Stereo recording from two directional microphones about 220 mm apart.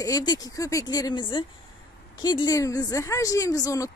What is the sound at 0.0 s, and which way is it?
A woman's voice, 15° left (ahead or behind).